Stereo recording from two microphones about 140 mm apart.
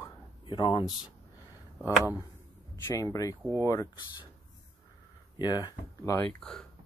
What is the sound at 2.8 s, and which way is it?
Speech, 20° left (ahead or behind).